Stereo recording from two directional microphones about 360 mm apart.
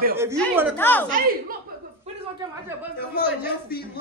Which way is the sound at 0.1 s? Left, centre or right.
Centre.